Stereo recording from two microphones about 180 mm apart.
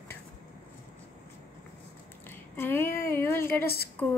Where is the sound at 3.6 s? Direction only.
60° left (ahead or behind).